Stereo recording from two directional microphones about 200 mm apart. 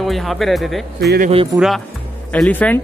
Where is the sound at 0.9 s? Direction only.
50° right (ahead or behind).